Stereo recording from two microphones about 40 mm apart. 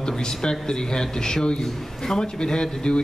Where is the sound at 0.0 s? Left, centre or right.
Centre.